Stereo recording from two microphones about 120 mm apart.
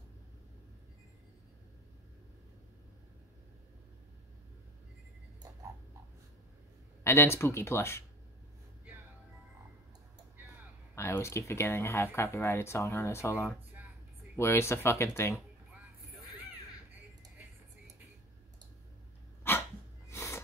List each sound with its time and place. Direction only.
7.0 s speech: 20° left (ahead or behind)
11.0 s speech: 20° left (ahead or behind)
19.4 s dog: 20° left (ahead or behind)
20.1 s music: 20° left (ahead or behind)